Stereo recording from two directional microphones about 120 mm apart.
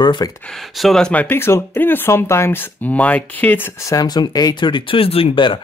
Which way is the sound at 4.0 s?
35° left (ahead or behind).